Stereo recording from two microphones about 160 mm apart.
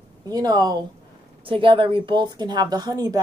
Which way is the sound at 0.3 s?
25° right (ahead or behind).